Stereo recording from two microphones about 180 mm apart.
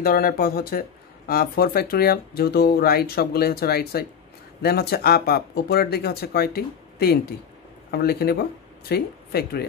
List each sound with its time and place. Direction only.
0.0 s speech: 55° left (ahead or behind)